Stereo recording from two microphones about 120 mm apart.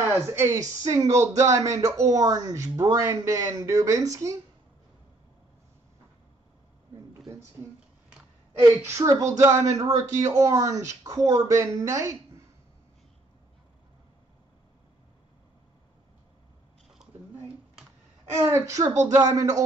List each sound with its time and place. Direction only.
0.3 s speech: 25° right (ahead or behind)
8.5 s speech: 20° right (ahead or behind)
18.3 s speech: 20° right (ahead or behind)